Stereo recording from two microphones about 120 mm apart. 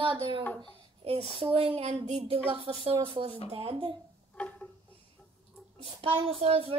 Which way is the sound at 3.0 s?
45° right (ahead or behind).